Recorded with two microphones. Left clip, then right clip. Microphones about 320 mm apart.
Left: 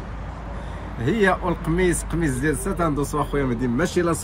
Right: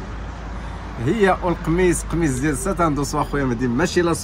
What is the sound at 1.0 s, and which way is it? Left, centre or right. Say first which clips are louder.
Speech: right 2 dB; centre.